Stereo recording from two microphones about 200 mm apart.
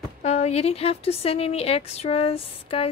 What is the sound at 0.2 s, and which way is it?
Speech, 35° left (ahead or behind).